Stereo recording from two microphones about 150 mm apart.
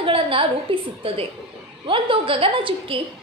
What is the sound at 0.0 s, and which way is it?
A woman's voice, 35° right (ahead or behind).